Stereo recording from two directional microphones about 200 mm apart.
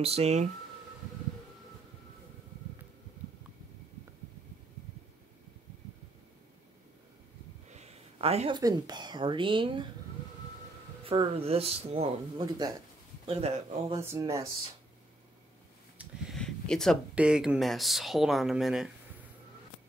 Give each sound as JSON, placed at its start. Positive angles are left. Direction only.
{"t": 0.0, "sound": "speech", "side_deg": -30}
{"t": 7.7, "sound": "speech", "side_deg": -30}
{"t": 11.1, "sound": "speech", "side_deg": -30}
{"t": 13.3, "sound": "speech", "side_deg": -30}
{"t": 13.9, "sound": "speech", "side_deg": -15}
{"t": 16.0, "sound": "speech", "side_deg": 0}